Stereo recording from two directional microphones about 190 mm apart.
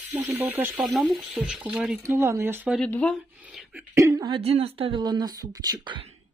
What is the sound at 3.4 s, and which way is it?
Speech, 5° right (ahead or behind).